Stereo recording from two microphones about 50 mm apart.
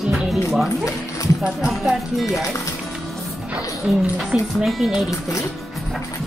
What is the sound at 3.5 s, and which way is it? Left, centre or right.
Speech, right.